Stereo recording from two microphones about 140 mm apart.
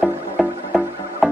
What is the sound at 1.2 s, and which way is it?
Music, centre (ahead or behind).